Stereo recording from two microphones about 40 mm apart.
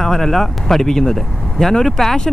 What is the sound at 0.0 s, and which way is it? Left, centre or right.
Speech, centre.